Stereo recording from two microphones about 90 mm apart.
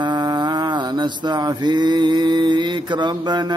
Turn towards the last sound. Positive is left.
turn(degrees=-55)  # may be behind; listen again after turning